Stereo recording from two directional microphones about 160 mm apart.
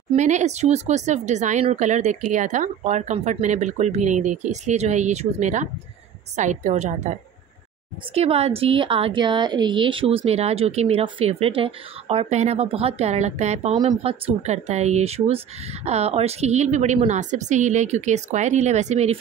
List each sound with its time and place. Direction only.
0.1 s a woman's voice: 50° right (ahead or behind)